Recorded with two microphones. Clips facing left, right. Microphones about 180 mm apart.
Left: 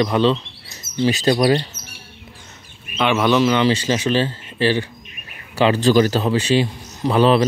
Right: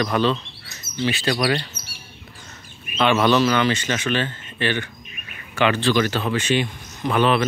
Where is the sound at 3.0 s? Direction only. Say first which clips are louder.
Left 1 dB; 10° left (ahead or behind).